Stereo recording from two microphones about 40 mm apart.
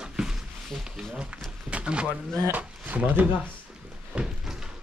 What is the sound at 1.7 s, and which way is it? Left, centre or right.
Speech, right.